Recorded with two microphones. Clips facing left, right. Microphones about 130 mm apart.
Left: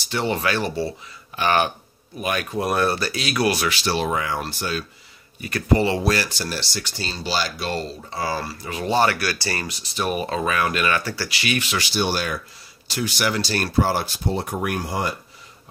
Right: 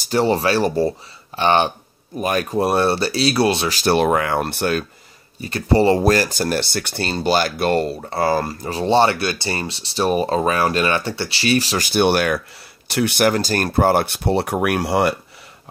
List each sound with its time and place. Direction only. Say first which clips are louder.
0.0 s speech: right 6 dB; 40° right (ahead or behind)
1.4 s speech: right 4 dB; 30° right (ahead or behind)
2.1 s speech: right 5 dB; 40° right (ahead or behind)
3.7 s speech: right 7 dB; 55° right (ahead or behind)
5.4 s speech: right 4 dB; 30° right (ahead or behind); by 8.7 s 50° right (ahead or behind)
8.7 s speech: right 4 dB; 30° right (ahead or behind)
11.9 s speech: right 9 dB; 60° right (ahead or behind); by 15.1 s 75° right (ahead or behind)